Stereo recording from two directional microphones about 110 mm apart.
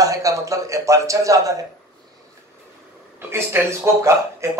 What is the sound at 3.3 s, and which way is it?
Speech, 25° right (ahead or behind).